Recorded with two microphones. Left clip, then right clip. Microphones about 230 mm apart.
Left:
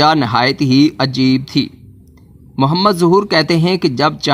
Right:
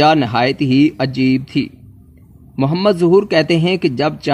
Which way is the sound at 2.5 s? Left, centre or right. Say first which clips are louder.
Left 2 dB; centre.